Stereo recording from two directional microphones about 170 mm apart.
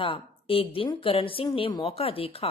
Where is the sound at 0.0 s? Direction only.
35° left (ahead or behind).